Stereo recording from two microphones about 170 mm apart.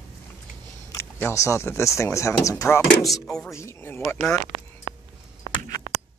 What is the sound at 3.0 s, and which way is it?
Speech, centre (ahead or behind).